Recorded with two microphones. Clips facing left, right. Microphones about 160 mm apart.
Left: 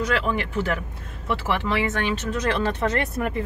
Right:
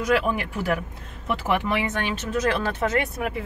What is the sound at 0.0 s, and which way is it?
Speech, 10° right (ahead or behind).